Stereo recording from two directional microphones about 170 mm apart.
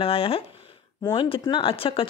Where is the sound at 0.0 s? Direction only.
35° left (ahead or behind).